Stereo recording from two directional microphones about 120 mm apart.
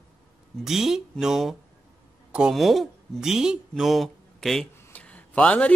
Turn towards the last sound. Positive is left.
turn(degrees=10)  # may be behind; listen again after turning